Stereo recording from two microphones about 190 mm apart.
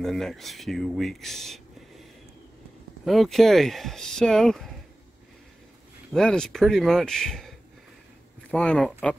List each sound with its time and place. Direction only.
0.0 s speech: centre (ahead or behind)
3.1 s speech: centre (ahead or behind)
6.1 s speech: 5° left (ahead or behind)